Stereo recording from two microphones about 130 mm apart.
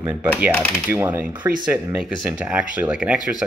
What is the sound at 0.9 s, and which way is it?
Speech, 15° right (ahead or behind).